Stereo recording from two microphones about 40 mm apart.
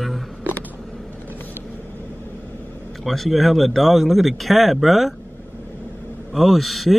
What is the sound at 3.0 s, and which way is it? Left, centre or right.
Speech, centre.